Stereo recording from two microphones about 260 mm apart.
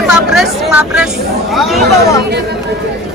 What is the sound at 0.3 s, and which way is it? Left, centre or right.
Speech, centre.